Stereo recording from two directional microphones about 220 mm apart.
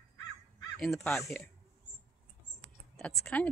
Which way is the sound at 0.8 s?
Centre (ahead or behind).